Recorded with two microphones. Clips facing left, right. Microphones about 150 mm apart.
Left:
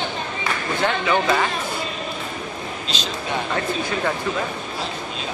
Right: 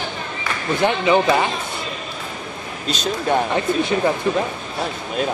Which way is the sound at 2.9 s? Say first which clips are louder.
Right 9 dB; 50° right (ahead or behind).